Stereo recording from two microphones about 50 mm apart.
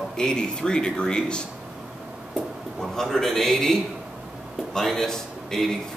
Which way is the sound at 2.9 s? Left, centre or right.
Centre.